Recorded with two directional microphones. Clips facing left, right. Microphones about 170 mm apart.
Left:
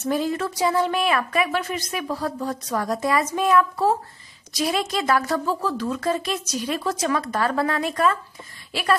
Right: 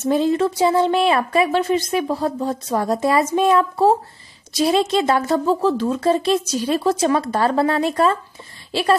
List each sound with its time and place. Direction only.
0.0 s speech: 25° right (ahead or behind)